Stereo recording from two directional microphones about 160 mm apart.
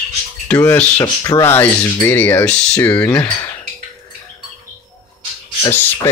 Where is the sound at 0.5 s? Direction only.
10° left (ahead or behind).